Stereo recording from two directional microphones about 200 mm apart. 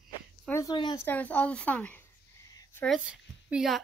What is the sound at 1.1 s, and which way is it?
Speech, 5° left (ahead or behind).